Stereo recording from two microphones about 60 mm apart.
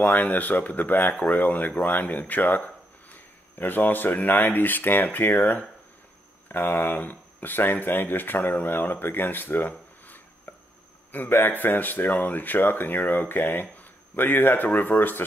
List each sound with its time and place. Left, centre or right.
0.1 s speech: left
6.5 s speech: left
10.5 s a sound: left
11.1 s a man's voice: left